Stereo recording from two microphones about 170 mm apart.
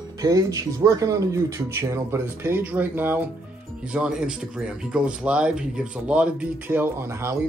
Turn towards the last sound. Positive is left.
turn(degrees=-15)  # may be behind; listen again after turning